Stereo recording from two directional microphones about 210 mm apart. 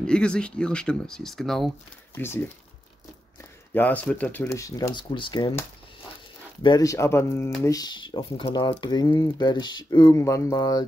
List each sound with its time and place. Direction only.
0.0 s speech: 5° left (ahead or behind)
3.7 s speech: 5° left (ahead or behind)